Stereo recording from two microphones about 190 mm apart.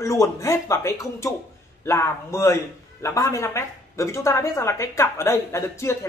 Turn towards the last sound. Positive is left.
turn(degrees=15)  # may be behind; listen again after turning